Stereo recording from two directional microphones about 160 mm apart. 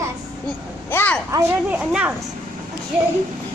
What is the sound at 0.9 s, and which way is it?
Speech, 10° left (ahead or behind).